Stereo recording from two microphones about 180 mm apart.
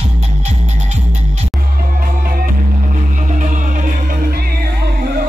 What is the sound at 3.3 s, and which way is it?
Music, 45° right (ahead or behind).